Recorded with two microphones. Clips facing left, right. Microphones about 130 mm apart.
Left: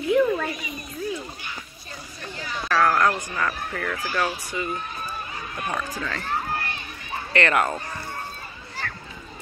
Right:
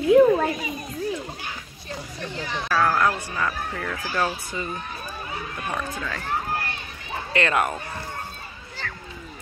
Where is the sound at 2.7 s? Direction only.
10° right (ahead or behind).